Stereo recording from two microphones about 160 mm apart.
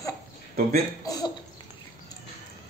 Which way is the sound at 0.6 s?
65° right (ahead or behind).